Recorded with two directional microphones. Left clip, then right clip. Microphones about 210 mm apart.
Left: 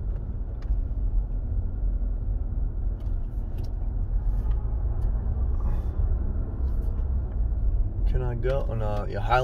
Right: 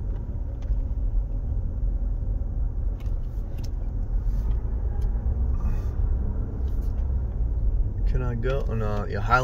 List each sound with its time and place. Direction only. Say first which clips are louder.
8.1 s speech: left 1 dB; 20° right (ahead or behind)